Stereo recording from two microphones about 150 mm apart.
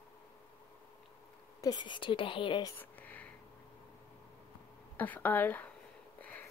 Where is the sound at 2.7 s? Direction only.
10° left (ahead or behind).